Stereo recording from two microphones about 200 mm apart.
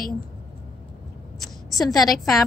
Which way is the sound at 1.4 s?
Centre (ahead or behind).